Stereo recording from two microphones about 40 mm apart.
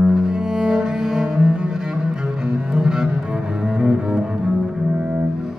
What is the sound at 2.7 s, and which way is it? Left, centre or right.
Cello, centre.